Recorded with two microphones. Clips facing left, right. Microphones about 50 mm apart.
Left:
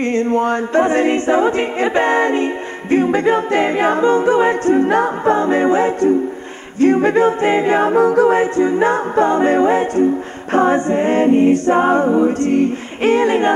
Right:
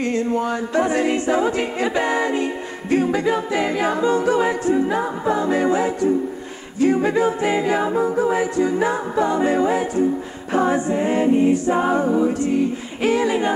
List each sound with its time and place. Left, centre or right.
0.0 s music: left
4.6 s music: left
7.0 s music: left
7.9 s a capella: left
8.3 s music: left
12.4 s music: left